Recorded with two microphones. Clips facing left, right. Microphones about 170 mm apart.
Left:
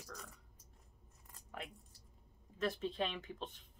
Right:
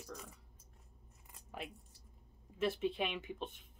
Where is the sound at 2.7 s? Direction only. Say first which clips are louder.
Right 2 dB; 20° right (ahead or behind).